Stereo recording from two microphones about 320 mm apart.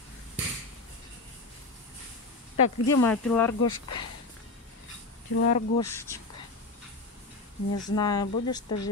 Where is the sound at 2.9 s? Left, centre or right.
Centre.